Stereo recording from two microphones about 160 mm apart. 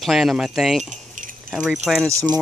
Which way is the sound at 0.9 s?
55° right (ahead or behind).